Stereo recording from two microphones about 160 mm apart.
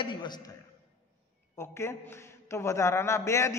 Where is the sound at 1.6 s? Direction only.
15° left (ahead or behind).